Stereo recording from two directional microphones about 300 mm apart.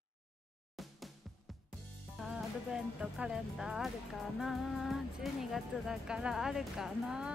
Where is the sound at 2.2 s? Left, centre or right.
Centre.